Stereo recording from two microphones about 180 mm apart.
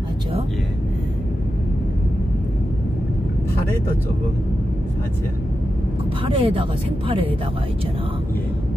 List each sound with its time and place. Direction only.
6.2 s speech: 30° right (ahead or behind)